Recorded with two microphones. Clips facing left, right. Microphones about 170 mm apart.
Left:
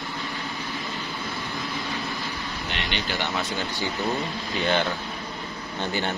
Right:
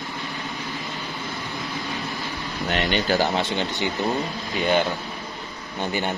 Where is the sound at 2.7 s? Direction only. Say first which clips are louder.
Right 9 dB; 45° right (ahead or behind); by 3.9 s 25° right (ahead or behind).